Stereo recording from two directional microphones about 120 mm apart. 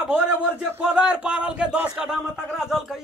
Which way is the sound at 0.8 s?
10° right (ahead or behind).